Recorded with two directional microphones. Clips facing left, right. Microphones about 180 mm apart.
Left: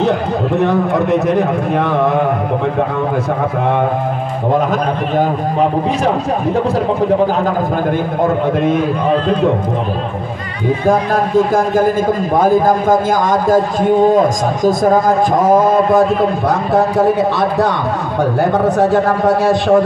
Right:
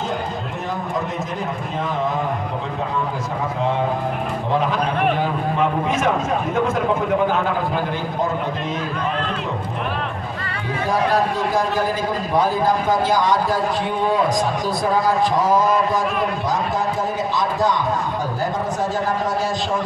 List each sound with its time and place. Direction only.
0.6 s a man's voice: 70° left (ahead or behind)
5.1 s a man's voice: 40° left (ahead or behind)
10.9 s a man's voice: 50° left (ahead or behind)